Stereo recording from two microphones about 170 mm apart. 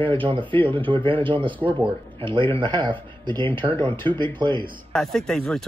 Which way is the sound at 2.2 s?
30° right (ahead or behind).